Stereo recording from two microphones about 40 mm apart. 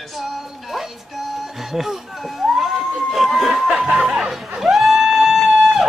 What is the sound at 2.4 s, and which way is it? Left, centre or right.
Crowd, centre.